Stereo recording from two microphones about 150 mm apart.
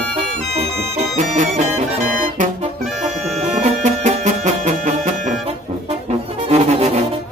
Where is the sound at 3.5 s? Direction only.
50° right (ahead or behind).